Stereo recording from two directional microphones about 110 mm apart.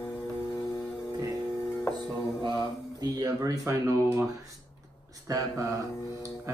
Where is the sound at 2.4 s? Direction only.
35° right (ahead or behind).